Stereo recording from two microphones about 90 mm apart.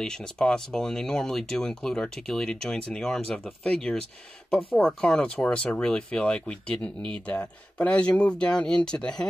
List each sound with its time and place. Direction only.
0.0 s speech: 10° left (ahead or behind)
4.7 s speech: 10° left (ahead or behind)